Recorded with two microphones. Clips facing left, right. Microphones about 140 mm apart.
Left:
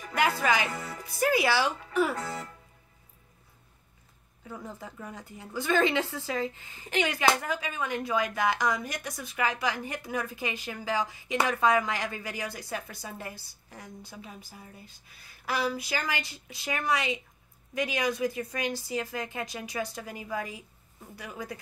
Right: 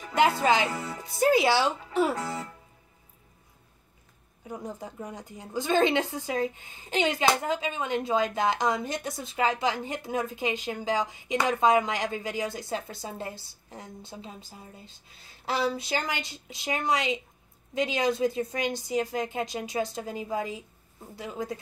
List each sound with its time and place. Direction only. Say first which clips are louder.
0.0 s speech: right 4 dB; 25° right (ahead or behind)
4.5 s speech: right 4 dB; 20° right (ahead or behind)